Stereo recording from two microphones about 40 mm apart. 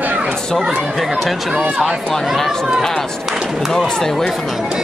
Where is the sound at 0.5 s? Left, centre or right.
Centre.